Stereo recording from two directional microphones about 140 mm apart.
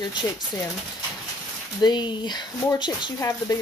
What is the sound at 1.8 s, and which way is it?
Speech, 30° left (ahead or behind).